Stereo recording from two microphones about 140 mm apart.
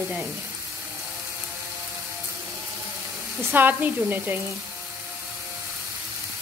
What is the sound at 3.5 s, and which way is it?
Speech, 15° right (ahead or behind).